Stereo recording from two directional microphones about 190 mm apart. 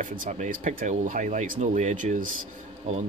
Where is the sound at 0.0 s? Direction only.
45° right (ahead or behind).